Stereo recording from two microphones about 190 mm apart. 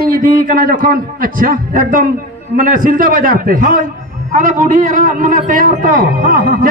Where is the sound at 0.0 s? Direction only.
50° right (ahead or behind).